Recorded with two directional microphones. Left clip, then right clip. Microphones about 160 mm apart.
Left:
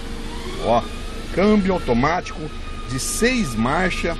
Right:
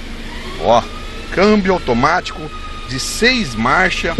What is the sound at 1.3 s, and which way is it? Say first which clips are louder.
Speech: right 6 dB; 10° right (ahead or behind).